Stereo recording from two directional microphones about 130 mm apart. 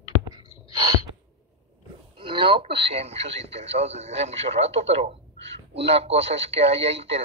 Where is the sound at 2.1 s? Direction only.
40° right (ahead or behind).